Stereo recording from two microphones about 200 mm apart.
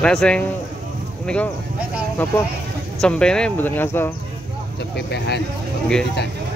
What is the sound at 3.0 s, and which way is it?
Speech, 5° left (ahead or behind).